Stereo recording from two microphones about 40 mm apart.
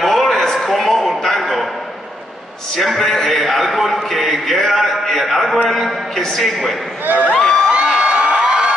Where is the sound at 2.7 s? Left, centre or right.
Centre.